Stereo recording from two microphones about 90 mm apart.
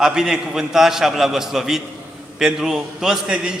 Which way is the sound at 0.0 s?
5° right (ahead or behind).